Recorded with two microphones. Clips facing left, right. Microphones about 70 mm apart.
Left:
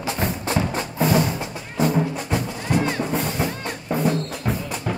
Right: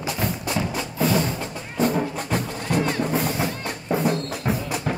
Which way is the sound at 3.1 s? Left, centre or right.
Centre.